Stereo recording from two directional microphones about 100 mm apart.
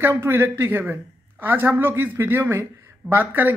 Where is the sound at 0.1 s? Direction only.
25° right (ahead or behind).